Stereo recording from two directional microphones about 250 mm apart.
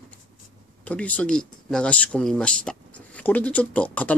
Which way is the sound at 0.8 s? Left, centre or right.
Centre.